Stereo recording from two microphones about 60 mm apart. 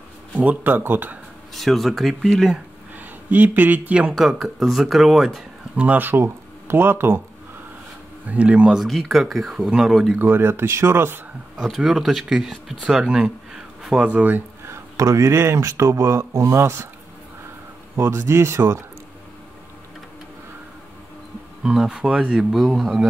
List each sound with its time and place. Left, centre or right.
0.7 s speech: right
1.5 s speech: centre
3.0 s speech: right
4.1 s speech: centre
5.9 s speech: right
8.3 s speech: right
8.7 s speech: centre
10.1 s speech: right
11.5 s speech: centre
14.0 s speech: right
14.7 s speech: right
17.9 s speech: right
21.6 s speech: centre
22.6 s speech: centre